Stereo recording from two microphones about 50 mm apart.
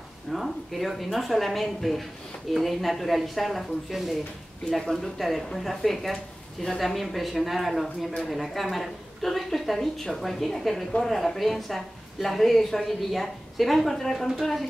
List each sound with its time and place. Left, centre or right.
0.3 s a woman's voice: centre